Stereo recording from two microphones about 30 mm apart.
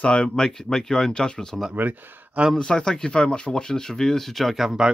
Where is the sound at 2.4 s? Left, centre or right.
Right.